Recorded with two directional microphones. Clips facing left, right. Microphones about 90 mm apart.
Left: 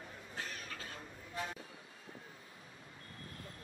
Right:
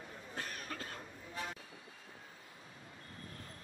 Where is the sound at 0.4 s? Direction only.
45° right (ahead or behind).